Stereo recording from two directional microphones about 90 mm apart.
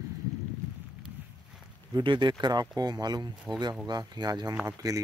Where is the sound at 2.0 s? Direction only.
60° right (ahead or behind).